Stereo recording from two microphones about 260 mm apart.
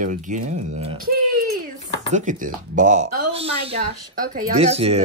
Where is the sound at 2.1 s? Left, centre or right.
Right.